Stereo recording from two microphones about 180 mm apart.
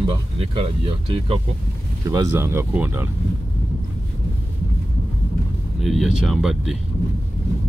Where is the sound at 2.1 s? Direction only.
15° right (ahead or behind).